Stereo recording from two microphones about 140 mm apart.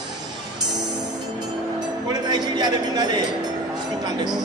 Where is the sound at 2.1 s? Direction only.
30° right (ahead or behind).